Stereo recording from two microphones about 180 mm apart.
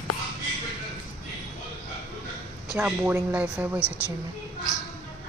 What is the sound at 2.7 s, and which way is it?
Speech, 10° right (ahead or behind).